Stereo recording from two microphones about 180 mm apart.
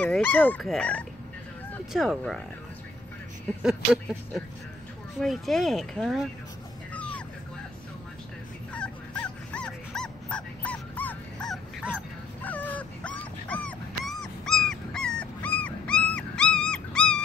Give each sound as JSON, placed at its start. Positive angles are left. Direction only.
{"t": 0.0, "sound": "speech", "side_deg": 10}
{"t": 5.2, "sound": "speech", "side_deg": 0}
{"t": 6.9, "sound": "a sound", "side_deg": 5}
{"t": 8.7, "sound": "dog", "side_deg": 5}